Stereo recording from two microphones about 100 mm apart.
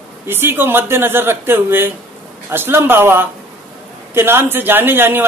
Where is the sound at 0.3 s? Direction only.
20° right (ahead or behind).